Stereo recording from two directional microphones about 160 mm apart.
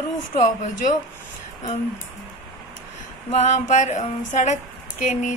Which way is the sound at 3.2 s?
45° left (ahead or behind).